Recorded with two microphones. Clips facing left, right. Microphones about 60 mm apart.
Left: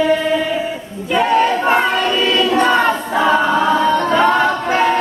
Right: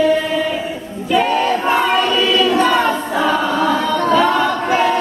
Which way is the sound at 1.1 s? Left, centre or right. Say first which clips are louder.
Left 1 dB; left.